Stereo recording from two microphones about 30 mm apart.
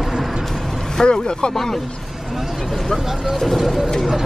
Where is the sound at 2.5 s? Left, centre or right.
Centre.